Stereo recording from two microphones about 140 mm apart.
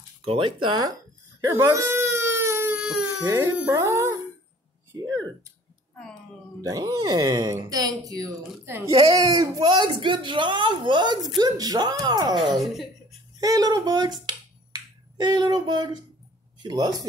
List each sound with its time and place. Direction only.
0.2 s speech: 35° right (ahead or behind)
1.4 s baby cry: 20° right (ahead or behind)
3.1 s speech: 20° right (ahead or behind)
6.6 s speech: 25° right (ahead or behind)
12.4 s speech: centre (ahead or behind)
13.4 s speech: 25° right (ahead or behind)